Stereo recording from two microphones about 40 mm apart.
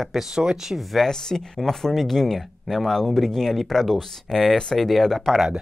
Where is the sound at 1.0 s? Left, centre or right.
Centre.